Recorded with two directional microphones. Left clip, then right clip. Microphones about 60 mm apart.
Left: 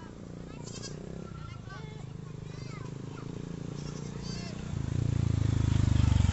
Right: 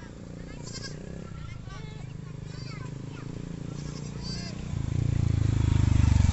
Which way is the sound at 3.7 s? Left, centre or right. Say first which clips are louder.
Right 1 dB; centre.